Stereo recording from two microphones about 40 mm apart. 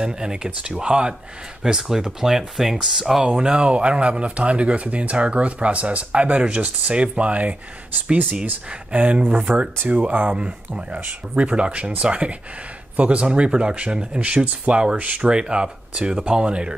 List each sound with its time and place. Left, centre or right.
0.0 s speech: centre
1.6 s speech: centre; by 7.5 s right
8.6 s speech: right
9.2 s speech: right
10.3 s speech: right
11.0 s speech: right
11.4 s speech: right
15.0 s speech: right
15.2 s speech: right